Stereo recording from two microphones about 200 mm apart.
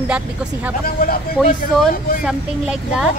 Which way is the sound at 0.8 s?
45° left (ahead or behind).